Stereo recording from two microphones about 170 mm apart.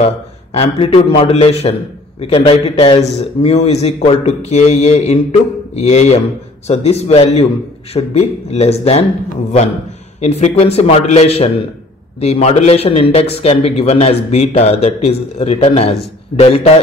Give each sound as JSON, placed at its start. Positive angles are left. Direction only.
{"t": 0.0, "sound": "a man's voice", "side_deg": 35}
{"t": 10.2, "sound": "a man's voice", "side_deg": 40}